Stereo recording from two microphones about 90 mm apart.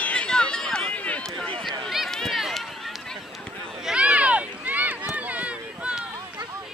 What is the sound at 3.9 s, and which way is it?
Run, 15° right (ahead or behind).